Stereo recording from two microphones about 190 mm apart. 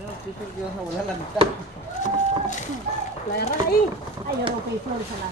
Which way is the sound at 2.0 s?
40° left (ahead or behind).